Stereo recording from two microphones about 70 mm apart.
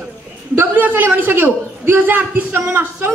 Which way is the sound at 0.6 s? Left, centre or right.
Right.